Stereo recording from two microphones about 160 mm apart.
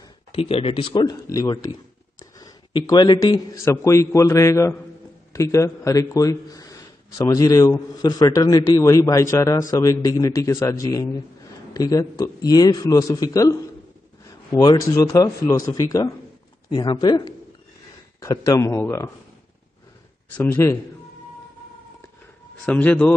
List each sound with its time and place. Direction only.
0.4 s a man's voice: 35° left (ahead or behind); by 19.1 s 15° left (ahead or behind)
20.3 s a man's voice: 10° left (ahead or behind)
22.7 s a man's voice: 10° left (ahead or behind)